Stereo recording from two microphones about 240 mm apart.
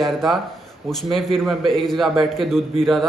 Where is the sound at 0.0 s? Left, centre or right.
Centre.